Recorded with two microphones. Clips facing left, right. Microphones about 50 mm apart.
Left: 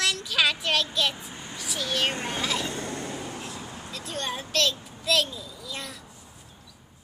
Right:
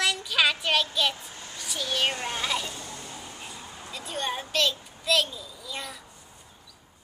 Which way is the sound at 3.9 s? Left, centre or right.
Centre.